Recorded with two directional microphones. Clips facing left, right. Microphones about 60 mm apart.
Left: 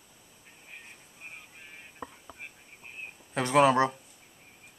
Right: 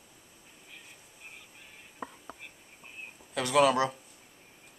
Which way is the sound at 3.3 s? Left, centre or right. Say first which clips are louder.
Left 2 dB; left.